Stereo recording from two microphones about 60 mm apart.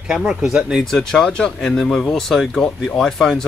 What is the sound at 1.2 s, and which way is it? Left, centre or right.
Speech, centre.